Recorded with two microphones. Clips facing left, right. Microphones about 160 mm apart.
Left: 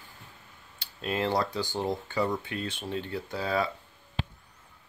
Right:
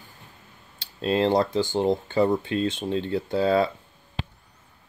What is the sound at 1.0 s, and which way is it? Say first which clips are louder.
Speech: right 7 dB; 25° right (ahead or behind).